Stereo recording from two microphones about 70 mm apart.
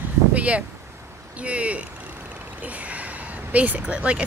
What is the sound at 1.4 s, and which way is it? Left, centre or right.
Speech, centre.